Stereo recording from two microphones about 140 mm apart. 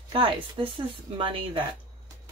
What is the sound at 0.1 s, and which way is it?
Speech, 35° right (ahead or behind).